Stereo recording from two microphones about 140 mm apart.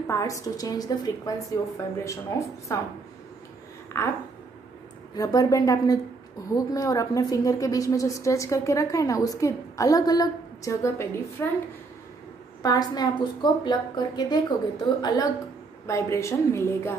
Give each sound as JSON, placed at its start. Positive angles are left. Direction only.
{"t": 0.0, "sound": "a woman's voice", "side_deg": 20}
{"t": 3.9, "sound": "a woman's voice", "side_deg": 20}
{"t": 5.1, "sound": "a woman's voice", "side_deg": 25}
{"t": 12.6, "sound": "a woman's voice", "side_deg": 30}
{"t": 15.9, "sound": "a woman's voice", "side_deg": 20}